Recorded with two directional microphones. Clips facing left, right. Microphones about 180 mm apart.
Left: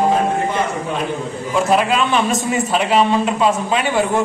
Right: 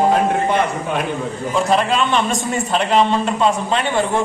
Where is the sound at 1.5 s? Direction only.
5° left (ahead or behind).